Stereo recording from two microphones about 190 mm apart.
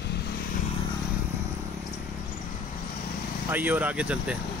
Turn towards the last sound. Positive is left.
turn(degrees=-5)  # may be behind; listen again after turning